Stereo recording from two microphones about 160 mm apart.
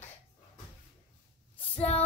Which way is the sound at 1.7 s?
40° left (ahead or behind).